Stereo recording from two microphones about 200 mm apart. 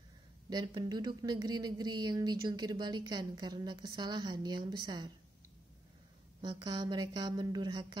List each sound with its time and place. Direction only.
0.5 s speech: 20° right (ahead or behind)
6.4 s speech: 20° right (ahead or behind)